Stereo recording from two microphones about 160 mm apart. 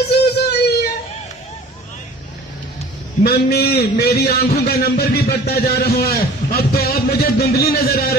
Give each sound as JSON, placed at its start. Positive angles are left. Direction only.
{"t": 0.0, "sound": "music", "side_deg": 90}
{"t": 3.3, "sound": "a man's voice", "side_deg": 75}